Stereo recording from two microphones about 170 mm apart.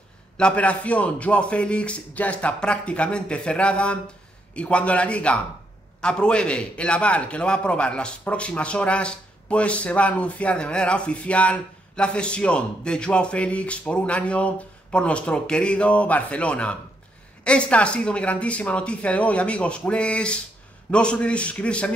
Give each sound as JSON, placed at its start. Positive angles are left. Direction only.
{"t": 0.4, "sound": "a man's voice", "side_deg": 5}